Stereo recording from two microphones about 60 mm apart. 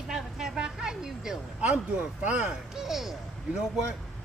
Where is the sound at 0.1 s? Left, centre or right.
Centre.